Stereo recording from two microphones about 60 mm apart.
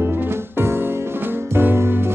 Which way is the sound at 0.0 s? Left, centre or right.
Right.